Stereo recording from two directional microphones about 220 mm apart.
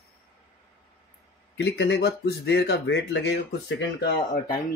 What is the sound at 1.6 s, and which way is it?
Speech, 50° left (ahead or behind).